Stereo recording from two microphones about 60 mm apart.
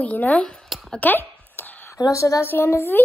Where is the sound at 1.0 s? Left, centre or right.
Left.